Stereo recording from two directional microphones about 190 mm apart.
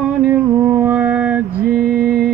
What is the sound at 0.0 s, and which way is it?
Mantra, 10° right (ahead or behind).